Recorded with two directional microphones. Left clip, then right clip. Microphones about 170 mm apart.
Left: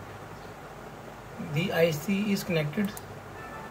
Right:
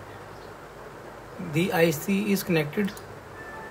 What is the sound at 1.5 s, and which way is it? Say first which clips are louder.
Speech: right 3 dB; 60° right (ahead or behind).